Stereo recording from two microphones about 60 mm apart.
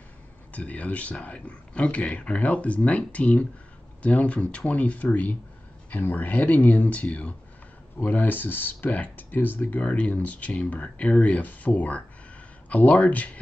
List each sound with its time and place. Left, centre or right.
0.5 s speech: left